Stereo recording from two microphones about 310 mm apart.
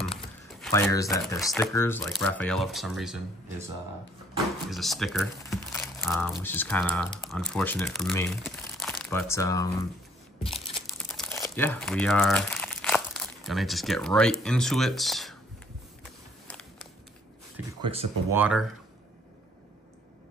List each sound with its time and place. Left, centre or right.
0.6 s speech: centre
4.6 s speech: centre
17.8 s speech: centre
18.4 s speech: centre